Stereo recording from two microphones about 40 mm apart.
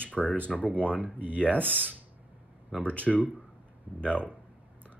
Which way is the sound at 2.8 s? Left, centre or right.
Left.